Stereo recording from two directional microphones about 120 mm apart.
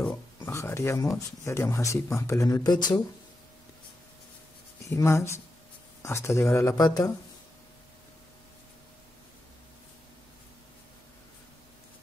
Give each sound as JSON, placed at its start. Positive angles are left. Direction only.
{"t": 0.1, "sound": "speech", "side_deg": 25}
{"t": 4.8, "sound": "speech", "side_deg": 25}